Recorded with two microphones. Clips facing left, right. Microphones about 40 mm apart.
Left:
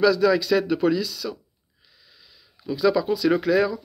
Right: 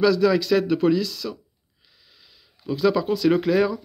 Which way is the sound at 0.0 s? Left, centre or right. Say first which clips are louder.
Even; right.